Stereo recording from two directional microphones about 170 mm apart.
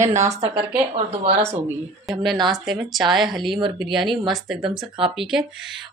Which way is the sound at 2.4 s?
Centre (ahead or behind).